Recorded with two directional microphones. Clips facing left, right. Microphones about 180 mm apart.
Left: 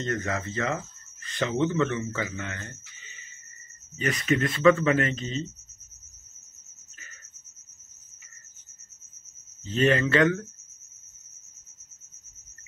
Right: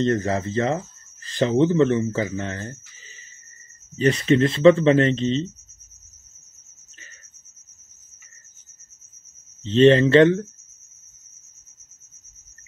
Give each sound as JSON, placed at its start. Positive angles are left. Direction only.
{"t": 0.0, "sound": "speech", "side_deg": -30}
{"t": 9.6, "sound": "speech", "side_deg": -25}